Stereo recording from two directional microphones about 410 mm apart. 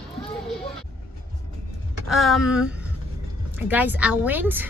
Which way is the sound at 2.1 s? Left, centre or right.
Centre.